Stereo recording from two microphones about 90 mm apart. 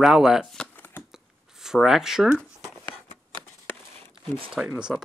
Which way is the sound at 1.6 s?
5° right (ahead or behind).